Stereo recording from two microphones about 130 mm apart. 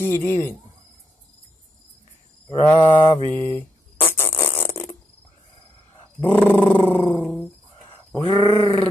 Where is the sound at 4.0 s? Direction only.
15° left (ahead or behind).